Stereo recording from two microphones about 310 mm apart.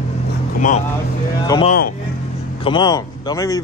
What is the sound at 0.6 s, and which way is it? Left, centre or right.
Speech, left.